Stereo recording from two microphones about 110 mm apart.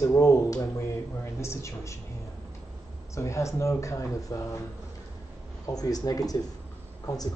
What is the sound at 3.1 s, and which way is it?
Speech, 25° left (ahead or behind).